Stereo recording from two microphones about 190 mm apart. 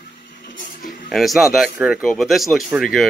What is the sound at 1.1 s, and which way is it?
Speech, centre (ahead or behind).